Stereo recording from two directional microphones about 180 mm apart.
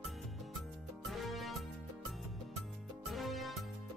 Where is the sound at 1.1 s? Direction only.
Centre (ahead or behind).